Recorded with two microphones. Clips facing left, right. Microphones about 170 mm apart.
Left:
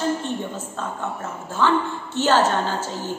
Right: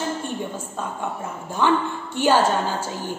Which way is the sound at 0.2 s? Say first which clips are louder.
Left 1 dB; 10° right (ahead or behind).